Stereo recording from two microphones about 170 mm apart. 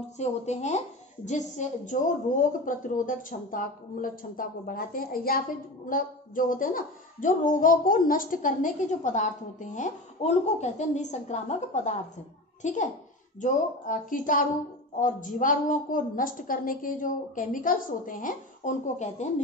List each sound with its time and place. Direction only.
0.2 s a woman's voice: 40° left (ahead or behind)